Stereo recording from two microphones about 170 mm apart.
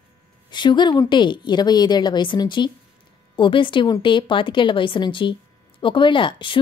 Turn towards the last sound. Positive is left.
turn(degrees=30)  # may be behind; listen again after turning